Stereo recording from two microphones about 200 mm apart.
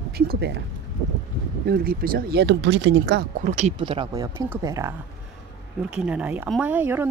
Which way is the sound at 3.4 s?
35° right (ahead or behind).